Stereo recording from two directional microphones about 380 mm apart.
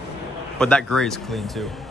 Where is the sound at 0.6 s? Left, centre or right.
Centre.